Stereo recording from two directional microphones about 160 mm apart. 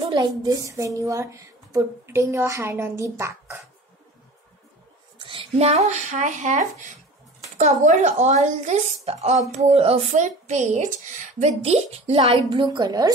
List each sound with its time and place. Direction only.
0.0 s a woman's voice: 30° right (ahead or behind)
5.2 s a woman's voice: 30° right (ahead or behind)